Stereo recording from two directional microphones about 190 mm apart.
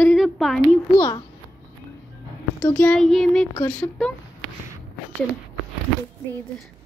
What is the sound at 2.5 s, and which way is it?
Speech, 10° left (ahead or behind).